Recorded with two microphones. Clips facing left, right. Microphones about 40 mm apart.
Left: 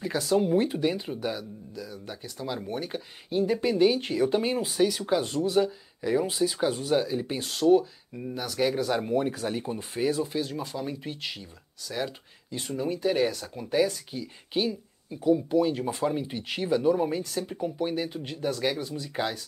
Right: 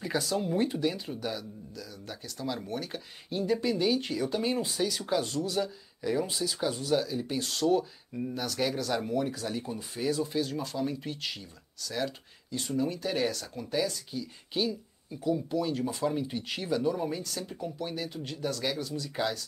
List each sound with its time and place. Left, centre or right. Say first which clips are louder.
0.2 s speech: left 8 dB; centre
9.1 s speech: left 4 dB; left